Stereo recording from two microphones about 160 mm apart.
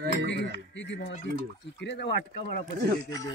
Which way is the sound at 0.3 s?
90° left.